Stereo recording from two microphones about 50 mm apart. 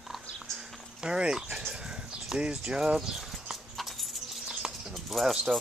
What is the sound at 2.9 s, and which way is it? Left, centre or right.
Clip-clop, centre.